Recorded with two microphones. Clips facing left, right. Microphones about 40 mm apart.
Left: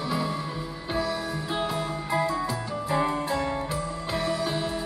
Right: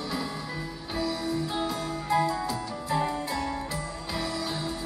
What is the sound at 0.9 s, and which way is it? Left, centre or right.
Music, left.